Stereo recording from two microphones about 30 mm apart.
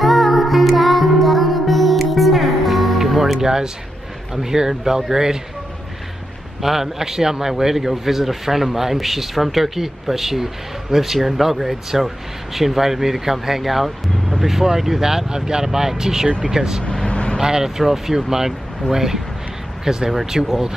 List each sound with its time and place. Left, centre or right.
0.0 s music: centre
3.3 s a man's voice: right
6.6 s a man's voice: centre
17.1 s vehicle: left
17.4 s a man's voice: centre